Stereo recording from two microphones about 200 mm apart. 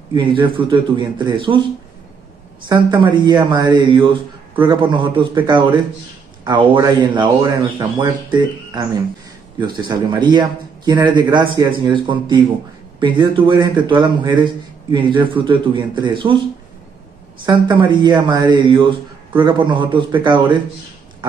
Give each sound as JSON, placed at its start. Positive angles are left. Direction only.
{"t": 0.1, "sound": "a man's voice", "side_deg": -25}
{"t": 2.7, "sound": "a man's voice", "side_deg": -20}
{"t": 17.5, "sound": "a man's voice", "side_deg": -20}